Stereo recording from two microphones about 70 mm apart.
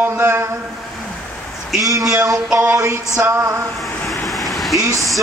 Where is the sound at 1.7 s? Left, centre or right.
Right.